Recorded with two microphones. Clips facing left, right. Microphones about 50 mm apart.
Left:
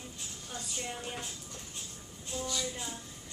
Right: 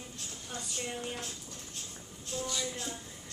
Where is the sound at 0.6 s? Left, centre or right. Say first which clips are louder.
Right 1 dB; centre.